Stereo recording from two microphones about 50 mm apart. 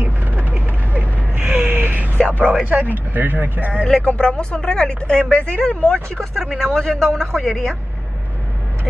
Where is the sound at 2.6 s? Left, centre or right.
Right.